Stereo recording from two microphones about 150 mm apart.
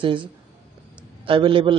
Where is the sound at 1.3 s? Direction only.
35° right (ahead or behind).